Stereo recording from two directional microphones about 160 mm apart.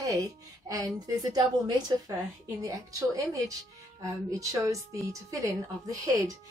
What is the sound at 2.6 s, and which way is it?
A woman's voice, 20° right (ahead or behind).